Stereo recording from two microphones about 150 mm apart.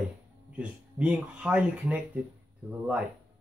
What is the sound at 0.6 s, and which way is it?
Speech, 5° right (ahead or behind).